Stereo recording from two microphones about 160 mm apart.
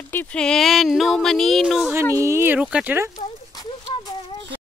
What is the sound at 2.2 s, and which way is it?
Speech, 15° right (ahead or behind).